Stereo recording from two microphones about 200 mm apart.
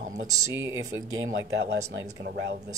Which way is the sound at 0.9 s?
80° right.